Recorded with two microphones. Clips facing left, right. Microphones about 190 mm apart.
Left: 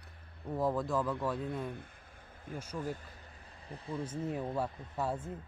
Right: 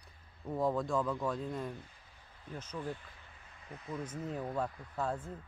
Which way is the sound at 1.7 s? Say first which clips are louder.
Left 2 dB; 55° left (ahead or behind).